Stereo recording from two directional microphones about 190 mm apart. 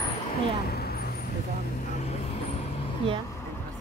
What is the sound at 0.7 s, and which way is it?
Vehicle, 55° left (ahead or behind).